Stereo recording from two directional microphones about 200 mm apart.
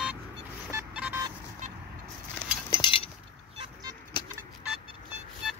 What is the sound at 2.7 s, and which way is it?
Chink, 25° left (ahead or behind).